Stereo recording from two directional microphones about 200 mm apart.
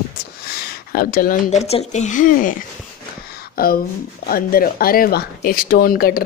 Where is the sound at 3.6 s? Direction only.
45° left (ahead or behind).